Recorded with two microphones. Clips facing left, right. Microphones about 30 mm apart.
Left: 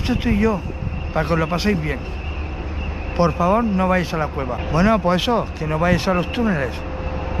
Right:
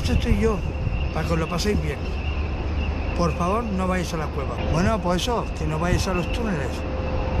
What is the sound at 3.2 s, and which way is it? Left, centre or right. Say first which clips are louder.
Speech: left 7 dB; left.